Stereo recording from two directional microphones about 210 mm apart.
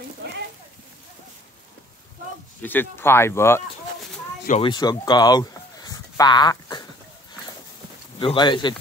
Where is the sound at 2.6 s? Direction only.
10° left (ahead or behind).